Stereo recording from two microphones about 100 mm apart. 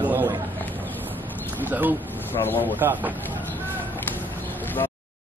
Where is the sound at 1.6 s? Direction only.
20° right (ahead or behind).